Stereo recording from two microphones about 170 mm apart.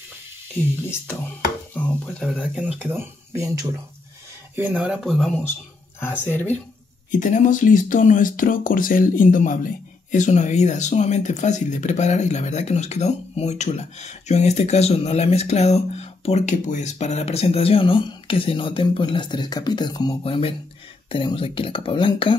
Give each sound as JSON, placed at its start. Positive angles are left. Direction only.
{"t": 1.7, "sound": "speech", "side_deg": 5}
{"t": 2.5, "sound": "speech", "side_deg": -5}
{"t": 4.6, "sound": "speech", "side_deg": -10}
{"t": 6.2, "sound": "speech", "side_deg": 10}
{"t": 7.1, "sound": "speech", "side_deg": 50}